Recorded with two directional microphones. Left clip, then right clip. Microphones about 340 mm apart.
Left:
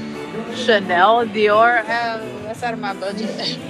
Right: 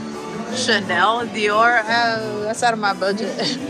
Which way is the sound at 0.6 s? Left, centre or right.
Centre.